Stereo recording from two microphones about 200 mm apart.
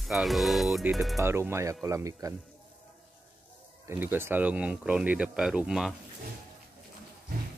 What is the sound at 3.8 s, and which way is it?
Speech, 10° right (ahead or behind).